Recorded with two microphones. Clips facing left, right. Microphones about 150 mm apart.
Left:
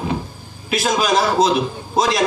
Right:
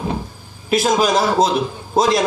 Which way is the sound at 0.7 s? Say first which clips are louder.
Right 2 dB; 45° right (ahead or behind).